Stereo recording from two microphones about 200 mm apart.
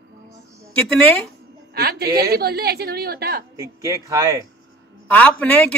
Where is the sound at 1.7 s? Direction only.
50° right (ahead or behind).